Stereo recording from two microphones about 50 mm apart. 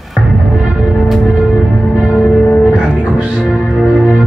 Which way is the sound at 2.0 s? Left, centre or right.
Centre.